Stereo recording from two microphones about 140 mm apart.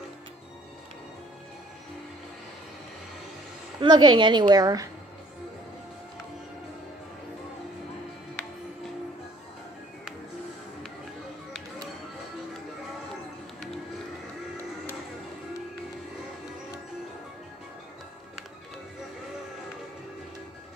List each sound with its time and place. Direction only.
3.8 s a woman's voice: 35° right (ahead or behind)